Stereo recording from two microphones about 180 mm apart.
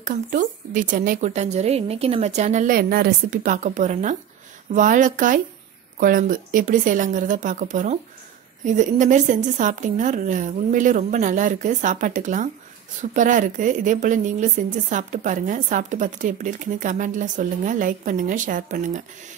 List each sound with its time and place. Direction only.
0.0 s speech: 45° right (ahead or behind)